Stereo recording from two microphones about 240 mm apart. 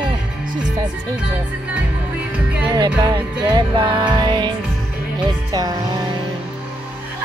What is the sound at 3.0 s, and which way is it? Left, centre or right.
Music, centre.